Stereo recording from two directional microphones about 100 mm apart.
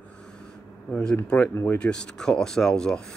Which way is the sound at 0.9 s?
5° left (ahead or behind).